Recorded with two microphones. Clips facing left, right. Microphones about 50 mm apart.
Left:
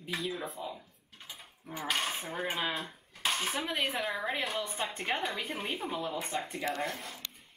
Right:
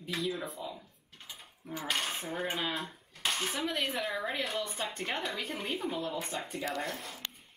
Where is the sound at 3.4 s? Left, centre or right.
Centre.